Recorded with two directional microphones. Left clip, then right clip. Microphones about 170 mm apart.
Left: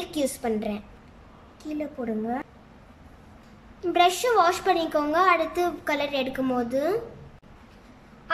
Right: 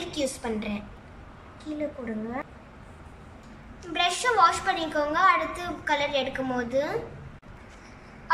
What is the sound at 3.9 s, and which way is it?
Speech, 55° left (ahead or behind).